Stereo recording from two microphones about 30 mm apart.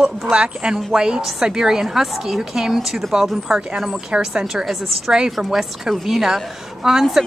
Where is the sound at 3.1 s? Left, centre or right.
Centre.